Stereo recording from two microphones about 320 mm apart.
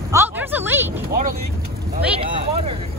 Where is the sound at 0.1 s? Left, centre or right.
Centre.